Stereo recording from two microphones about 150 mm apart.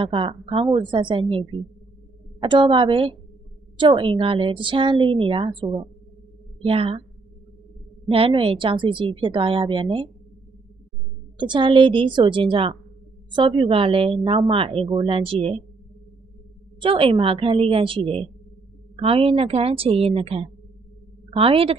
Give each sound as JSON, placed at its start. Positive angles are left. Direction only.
{"t": 0.0, "sound": "a woman's voice", "side_deg": -35}
{"t": 8.1, "sound": "a woman's voice", "side_deg": -35}
{"t": 11.3, "sound": "a woman's voice", "side_deg": -30}
{"t": 16.8, "sound": "a woman's voice", "side_deg": -35}